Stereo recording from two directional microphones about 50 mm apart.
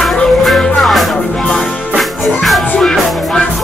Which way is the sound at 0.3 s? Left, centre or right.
Centre.